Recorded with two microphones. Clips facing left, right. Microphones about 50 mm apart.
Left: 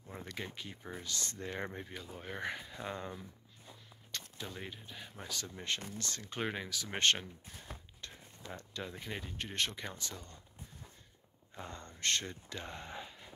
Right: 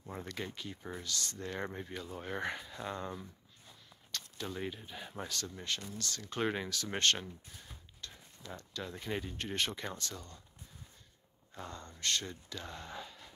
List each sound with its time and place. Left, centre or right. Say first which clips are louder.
0.3 s speech: even; centre
1.0 s speech: right 1 dB; left
1.4 s speech: right 1 dB; centre
3.6 s walk: left 3 dB; centre
4.5 s speech: right 5 dB; centre
5.3 s speech: left 3 dB; centre
6.4 s speech: right 4 dB; centre
7.0 s speech: left 1 dB; left
7.6 s a sound: left 4 dB; left
8.8 s speech: right 6 dB; centre
9.9 s speech: right 2 dB; centre
11.5 s speech: right 1 dB; left